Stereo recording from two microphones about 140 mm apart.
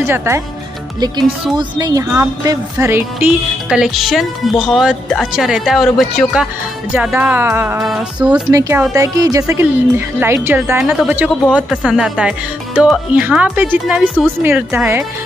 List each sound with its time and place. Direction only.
0.0 s speech: 20° right (ahead or behind)
1.6 s speech: 25° right (ahead or behind)
2.4 s music: 25° right (ahead or behind); by 6.4 s centre (ahead or behind)
6.9 s speech: 10° right (ahead or behind)
7.8 s music: 5° right (ahead or behind)
8.5 s speech: 20° right (ahead or behind)
10.8 s music: centre (ahead or behind)
11.2 s speech: centre (ahead or behind)